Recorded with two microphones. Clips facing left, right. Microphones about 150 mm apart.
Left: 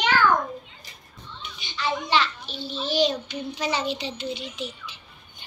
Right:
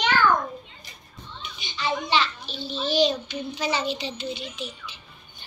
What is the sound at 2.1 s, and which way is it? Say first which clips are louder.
A child's voice: left 1 dB; 10° left (ahead or behind).